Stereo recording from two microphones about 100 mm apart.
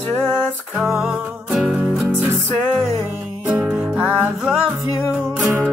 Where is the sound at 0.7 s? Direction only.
Centre (ahead or behind).